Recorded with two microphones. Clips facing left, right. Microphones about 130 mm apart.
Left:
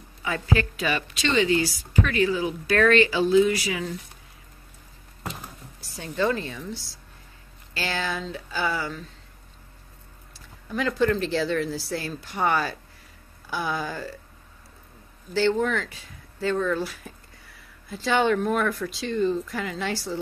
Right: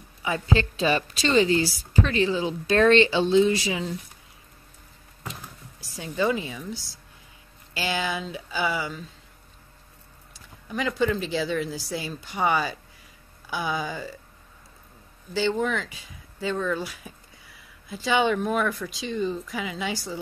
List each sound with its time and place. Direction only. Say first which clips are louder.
0.2 s speech: right 1 dB; 20° right (ahead or behind)
6.0 s speech: even; 10° right (ahead or behind)
7.7 s speech: right 1 dB; 10° right (ahead or behind)
10.7 s speech: left 2 dB; 5° right (ahead or behind)
15.3 s speech: left 2 dB; 5° right (ahead or behind)